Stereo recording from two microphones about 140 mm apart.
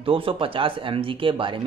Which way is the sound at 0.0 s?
40° right (ahead or behind).